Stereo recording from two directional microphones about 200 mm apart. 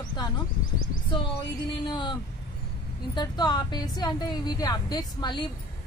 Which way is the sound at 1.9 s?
25° left (ahead or behind).